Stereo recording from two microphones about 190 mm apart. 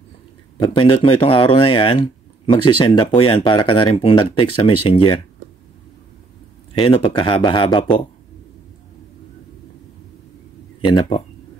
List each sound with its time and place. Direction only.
0.6 s speech: 30° left (ahead or behind)
6.7 s speech: 30° left (ahead or behind)
10.8 s speech: 25° left (ahead or behind)